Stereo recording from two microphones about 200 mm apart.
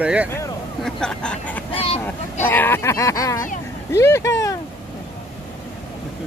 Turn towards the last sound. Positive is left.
turn(degrees=15)  # may be behind; listen again after turning